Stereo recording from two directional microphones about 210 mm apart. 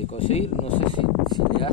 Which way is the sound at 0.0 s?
30° left (ahead or behind).